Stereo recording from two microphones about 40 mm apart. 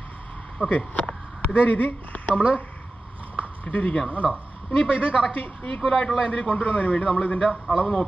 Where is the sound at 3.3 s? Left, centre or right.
Left.